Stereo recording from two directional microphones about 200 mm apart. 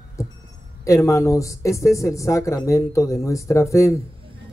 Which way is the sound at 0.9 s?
15° left (ahead or behind).